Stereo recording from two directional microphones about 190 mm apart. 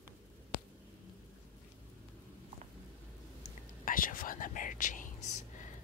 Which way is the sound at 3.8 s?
45° left (ahead or behind).